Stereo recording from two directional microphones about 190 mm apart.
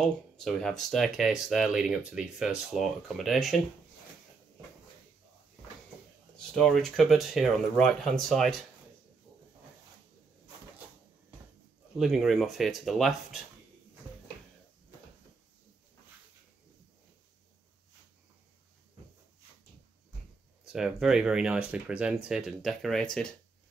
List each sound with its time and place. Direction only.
0.0 s speech: centre (ahead or behind)
6.3 s speech: 5° left (ahead or behind)
12.0 s speech: centre (ahead or behind)
20.6 s speech: 5° right (ahead or behind)